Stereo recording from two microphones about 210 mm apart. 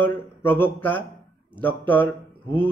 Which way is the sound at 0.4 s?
10° left (ahead or behind).